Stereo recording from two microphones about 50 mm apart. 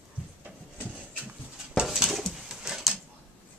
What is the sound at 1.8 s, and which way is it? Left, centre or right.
Dishes, centre.